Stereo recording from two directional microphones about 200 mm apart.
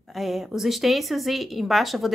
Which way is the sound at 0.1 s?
Centre (ahead or behind).